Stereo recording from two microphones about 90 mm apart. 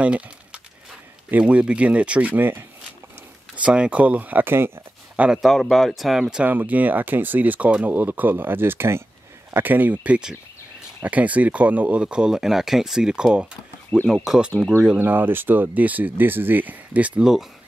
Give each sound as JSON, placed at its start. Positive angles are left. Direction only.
{"t": 0.0, "sound": "speech", "side_deg": -15}
{"t": 3.6, "sound": "speech", "side_deg": -10}
{"t": 5.2, "sound": "speech", "side_deg": -10}
{"t": 5.5, "sound": "speech", "side_deg": 0}
{"t": 13.9, "sound": "speech", "side_deg": 20}
{"t": 14.2, "sound": "speech", "side_deg": -5}
{"t": 15.0, "sound": "speech", "side_deg": -20}